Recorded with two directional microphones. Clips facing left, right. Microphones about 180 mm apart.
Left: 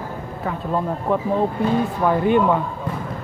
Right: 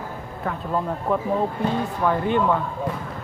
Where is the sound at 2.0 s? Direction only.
15° left (ahead or behind).